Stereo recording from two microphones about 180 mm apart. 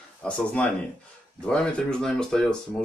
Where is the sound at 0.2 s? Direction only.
5° left (ahead or behind).